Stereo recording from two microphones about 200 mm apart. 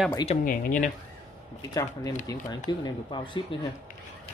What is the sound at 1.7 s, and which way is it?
Speech, 20° left (ahead or behind).